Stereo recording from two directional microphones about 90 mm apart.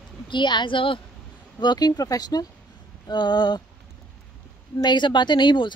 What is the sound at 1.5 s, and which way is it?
Speech, 50° left (ahead or behind).